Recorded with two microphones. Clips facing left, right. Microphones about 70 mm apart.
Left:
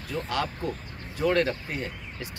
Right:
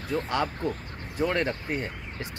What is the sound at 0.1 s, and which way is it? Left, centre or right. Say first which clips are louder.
Speech: right 3 dB; right.